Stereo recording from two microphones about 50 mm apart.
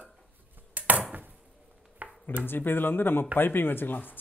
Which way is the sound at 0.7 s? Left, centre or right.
Right.